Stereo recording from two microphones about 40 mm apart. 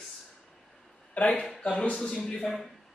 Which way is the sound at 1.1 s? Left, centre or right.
Left.